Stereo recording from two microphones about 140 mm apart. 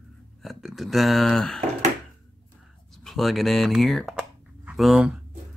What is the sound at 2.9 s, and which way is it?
Speech, centre (ahead or behind).